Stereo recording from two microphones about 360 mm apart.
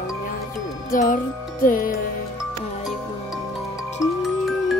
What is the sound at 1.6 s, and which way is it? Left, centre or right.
Music, left.